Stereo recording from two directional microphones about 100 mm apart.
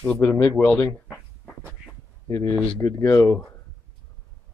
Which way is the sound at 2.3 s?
35° left (ahead or behind).